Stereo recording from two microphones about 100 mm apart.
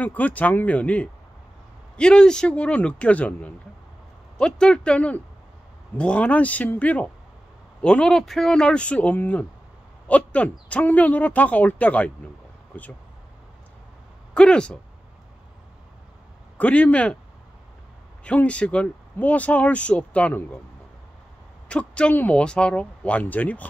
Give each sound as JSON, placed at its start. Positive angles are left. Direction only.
{"t": 0.0, "sound": "speech", "side_deg": 15}
{"t": 14.3, "sound": "speech", "side_deg": 10}
{"t": 16.5, "sound": "speech", "side_deg": 15}
{"t": 18.2, "sound": "speech", "side_deg": 10}
{"t": 21.6, "sound": "speech", "side_deg": 10}